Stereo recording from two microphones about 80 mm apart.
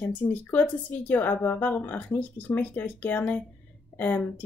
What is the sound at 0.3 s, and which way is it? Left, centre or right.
Speech, left.